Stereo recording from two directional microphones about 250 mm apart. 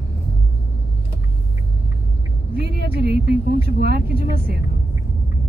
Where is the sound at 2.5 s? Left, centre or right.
Right.